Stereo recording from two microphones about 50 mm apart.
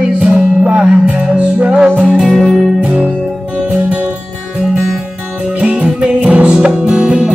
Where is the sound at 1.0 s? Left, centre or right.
Right.